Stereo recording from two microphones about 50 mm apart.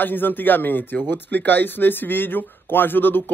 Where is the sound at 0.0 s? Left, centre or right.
Left.